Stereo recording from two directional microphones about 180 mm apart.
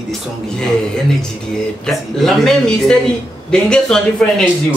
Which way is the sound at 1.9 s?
5° left (ahead or behind).